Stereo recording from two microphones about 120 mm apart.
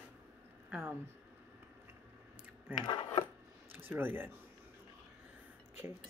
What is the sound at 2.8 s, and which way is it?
Speech, 40° left (ahead or behind).